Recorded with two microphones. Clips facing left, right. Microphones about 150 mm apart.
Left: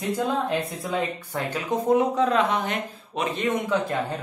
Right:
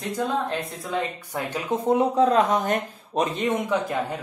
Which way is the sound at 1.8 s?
35° right (ahead or behind).